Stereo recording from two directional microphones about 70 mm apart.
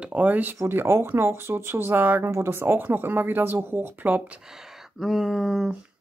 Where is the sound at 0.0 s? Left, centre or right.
Right.